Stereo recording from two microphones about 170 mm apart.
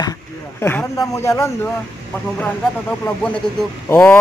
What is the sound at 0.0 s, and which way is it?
Speech, 20° left (ahead or behind).